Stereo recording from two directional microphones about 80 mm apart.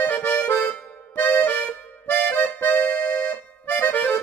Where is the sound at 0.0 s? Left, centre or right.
Left.